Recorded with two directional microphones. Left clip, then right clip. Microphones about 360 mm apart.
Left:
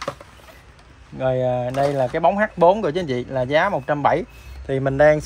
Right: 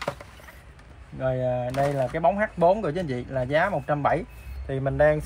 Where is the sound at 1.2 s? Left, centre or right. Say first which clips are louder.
Left 5 dB; left.